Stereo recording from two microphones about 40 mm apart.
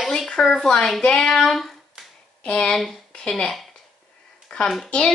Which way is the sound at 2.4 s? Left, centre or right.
Left.